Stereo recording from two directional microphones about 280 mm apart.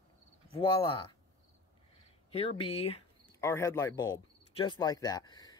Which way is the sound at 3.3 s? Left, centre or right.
Centre.